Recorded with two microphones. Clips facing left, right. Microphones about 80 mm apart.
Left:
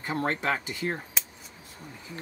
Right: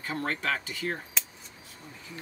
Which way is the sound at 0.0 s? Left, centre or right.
Left.